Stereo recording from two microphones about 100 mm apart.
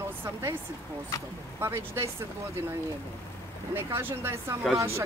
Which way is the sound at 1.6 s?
25° right (ahead or behind).